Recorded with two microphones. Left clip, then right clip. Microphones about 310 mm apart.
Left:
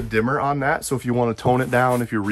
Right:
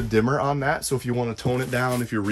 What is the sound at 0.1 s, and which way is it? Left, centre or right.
Speech, centre.